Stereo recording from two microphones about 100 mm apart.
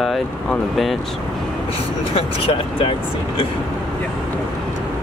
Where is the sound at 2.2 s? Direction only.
70° left (ahead or behind).